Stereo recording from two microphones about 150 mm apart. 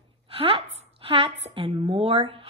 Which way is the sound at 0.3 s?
40° right (ahead or behind).